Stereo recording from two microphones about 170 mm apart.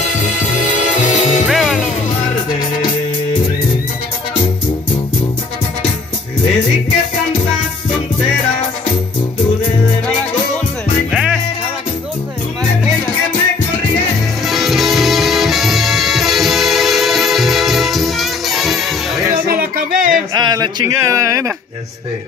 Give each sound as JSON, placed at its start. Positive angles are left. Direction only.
{"t": 0.0, "sound": "music", "side_deg": 45}
{"t": 1.4, "sound": "music", "side_deg": 0}
{"t": 14.4, "sound": "music", "side_deg": 0}
{"t": 19.5, "sound": "music", "side_deg": -55}
{"t": 20.3, "sound": "a sound", "side_deg": -25}